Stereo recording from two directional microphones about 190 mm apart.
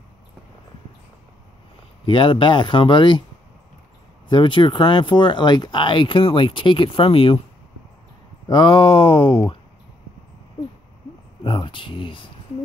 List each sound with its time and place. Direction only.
2.0 s speech: 25° left (ahead or behind)
4.3 s speech: 25° left (ahead or behind)
8.5 s speech: 25° left (ahead or behind)
11.4 s speech: 25° left (ahead or behind)